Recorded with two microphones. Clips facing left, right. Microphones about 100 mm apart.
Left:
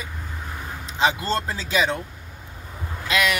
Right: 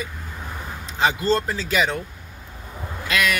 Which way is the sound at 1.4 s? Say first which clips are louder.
Right 1 dB; 25° left (ahead or behind).